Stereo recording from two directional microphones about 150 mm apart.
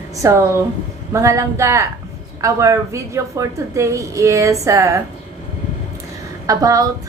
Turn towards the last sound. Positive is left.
turn(degrees=-25)  # may be behind; listen again after turning